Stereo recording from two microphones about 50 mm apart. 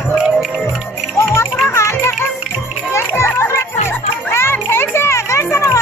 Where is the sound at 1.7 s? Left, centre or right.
Left.